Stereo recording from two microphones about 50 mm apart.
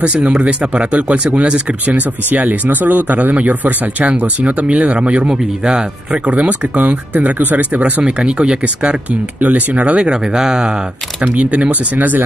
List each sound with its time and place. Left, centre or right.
0.0 s speech: right
8.0 s speech: centre
9.4 s speech: right; by 10.8 s centre
11.1 s speech: right